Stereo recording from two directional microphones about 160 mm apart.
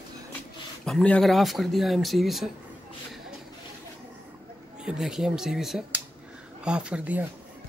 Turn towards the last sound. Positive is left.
turn(degrees=-10)  # may be behind; listen again after turning